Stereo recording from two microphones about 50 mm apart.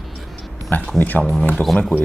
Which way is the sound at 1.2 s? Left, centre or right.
Centre.